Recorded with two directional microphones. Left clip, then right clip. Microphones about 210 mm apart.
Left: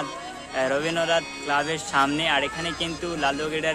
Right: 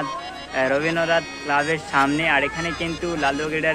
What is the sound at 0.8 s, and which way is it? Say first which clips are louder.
Speech: right 3 dB; 15° left (ahead or behind).